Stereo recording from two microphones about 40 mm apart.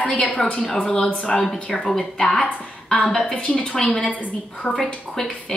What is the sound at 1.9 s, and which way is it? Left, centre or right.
A woman's voice, centre.